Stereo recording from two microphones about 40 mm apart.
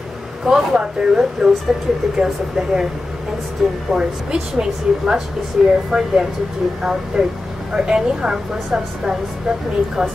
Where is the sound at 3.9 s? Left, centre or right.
Centre.